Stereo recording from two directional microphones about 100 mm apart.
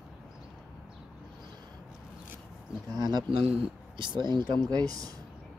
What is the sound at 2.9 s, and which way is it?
Speech, 40° right (ahead or behind).